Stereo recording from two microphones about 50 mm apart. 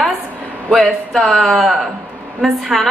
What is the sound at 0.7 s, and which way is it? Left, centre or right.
Speech, centre.